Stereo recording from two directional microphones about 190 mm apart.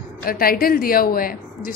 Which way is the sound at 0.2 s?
50° left (ahead or behind).